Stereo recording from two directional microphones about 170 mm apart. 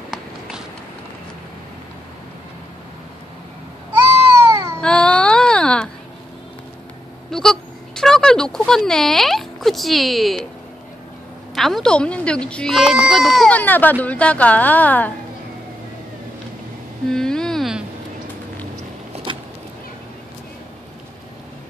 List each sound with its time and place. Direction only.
0.1 s run: 5° right (ahead or behind)
3.9 s baby cry: 20° right (ahead or behind)
4.8 s music: 5° left (ahead or behind)
7.2 s speech: 5° left (ahead or behind)
11.5 s speech: centre (ahead or behind)
17.1 s a sound: 5° left (ahead or behind)
19.1 s vehicle: 35° right (ahead or behind)